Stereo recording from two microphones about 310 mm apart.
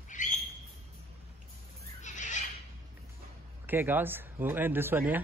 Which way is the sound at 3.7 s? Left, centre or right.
Centre.